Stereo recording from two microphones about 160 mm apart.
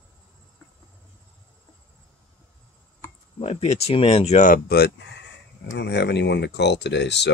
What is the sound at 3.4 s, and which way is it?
Speech, 40° left (ahead or behind).